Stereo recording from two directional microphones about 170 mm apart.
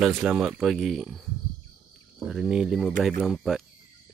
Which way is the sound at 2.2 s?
5° right (ahead or behind).